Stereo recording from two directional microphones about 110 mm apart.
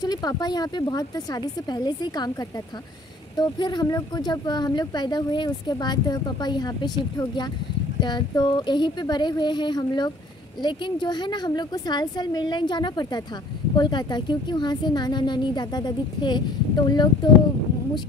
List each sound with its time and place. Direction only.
0.0 s speech: 35° left (ahead or behind)
3.3 s speech: 40° left (ahead or behind)